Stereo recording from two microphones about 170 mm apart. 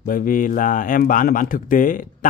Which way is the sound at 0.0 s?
55° left (ahead or behind).